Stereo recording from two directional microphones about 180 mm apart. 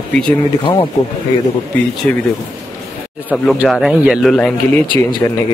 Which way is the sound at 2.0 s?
10° left (ahead or behind).